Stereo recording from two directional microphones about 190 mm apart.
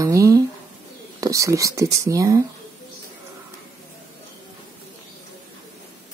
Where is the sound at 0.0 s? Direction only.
15° right (ahead or behind).